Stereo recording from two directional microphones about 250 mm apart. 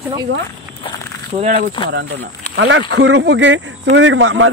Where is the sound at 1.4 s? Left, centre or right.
Right.